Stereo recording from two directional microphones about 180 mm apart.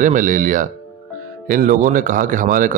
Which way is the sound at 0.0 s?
45° right (ahead or behind).